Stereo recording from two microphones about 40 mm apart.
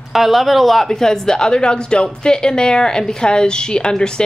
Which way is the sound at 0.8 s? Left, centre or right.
Centre.